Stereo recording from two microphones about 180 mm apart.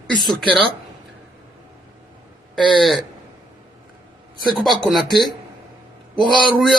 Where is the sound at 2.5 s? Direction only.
Centre (ahead or behind).